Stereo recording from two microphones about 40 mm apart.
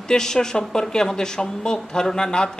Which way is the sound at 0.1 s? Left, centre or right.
Centre.